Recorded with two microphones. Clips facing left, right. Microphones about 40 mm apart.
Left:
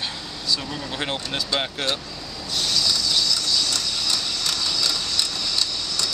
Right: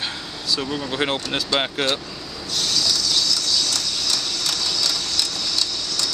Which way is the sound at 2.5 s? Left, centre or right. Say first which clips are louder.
Even; centre.